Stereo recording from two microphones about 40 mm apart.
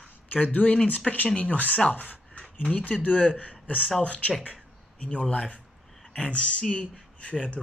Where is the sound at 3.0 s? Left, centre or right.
Left.